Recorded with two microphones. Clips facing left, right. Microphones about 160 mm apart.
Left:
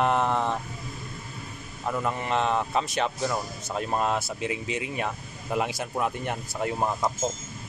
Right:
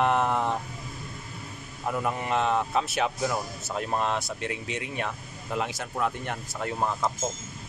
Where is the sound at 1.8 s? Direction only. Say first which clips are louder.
Even; 10° right (ahead or behind); by 7.0 s 15° left (ahead or behind).